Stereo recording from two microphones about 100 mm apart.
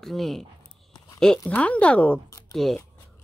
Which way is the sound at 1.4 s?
15° left (ahead or behind).